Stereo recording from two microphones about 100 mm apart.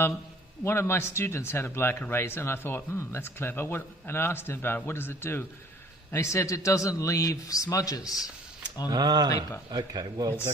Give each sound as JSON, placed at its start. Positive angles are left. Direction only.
{"t": 0.7, "sound": "a man's voice", "side_deg": 25}
{"t": 8.9, "sound": "speech", "side_deg": -40}